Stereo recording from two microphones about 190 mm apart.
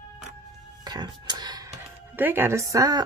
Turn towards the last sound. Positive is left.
turn(degrees=-20)  # may be behind; listen again after turning